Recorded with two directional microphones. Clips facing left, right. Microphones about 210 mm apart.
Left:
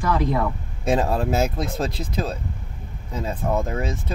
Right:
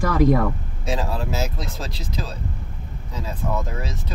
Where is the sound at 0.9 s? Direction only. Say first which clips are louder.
Left 5 dB; 50° left (ahead or behind).